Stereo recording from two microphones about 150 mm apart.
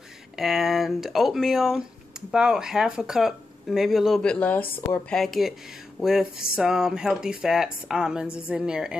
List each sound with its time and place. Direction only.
0.4 s speech: centre (ahead or behind)
5.2 s speech: centre (ahead or behind)